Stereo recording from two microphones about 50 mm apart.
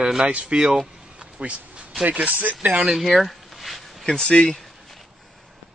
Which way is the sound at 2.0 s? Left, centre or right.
Right.